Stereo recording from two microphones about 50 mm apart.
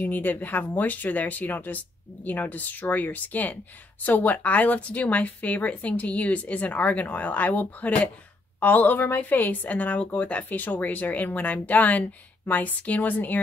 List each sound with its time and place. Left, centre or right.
0.0 s speech: left
10.5 s speech: left